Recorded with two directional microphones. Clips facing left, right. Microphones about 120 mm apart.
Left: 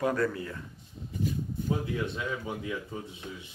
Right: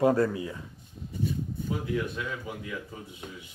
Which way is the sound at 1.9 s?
25° left (ahead or behind).